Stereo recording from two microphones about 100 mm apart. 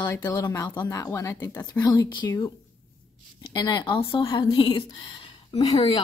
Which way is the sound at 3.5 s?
45° left (ahead or behind).